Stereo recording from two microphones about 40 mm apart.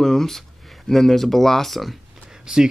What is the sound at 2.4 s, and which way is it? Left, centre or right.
Speech, centre.